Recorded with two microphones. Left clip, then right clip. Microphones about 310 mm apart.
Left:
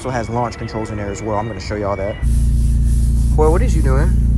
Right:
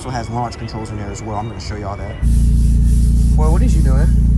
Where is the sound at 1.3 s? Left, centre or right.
Centre.